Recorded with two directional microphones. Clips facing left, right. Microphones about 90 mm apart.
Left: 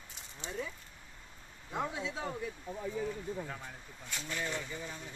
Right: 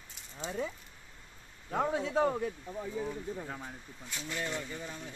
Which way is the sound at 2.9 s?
25° right (ahead or behind).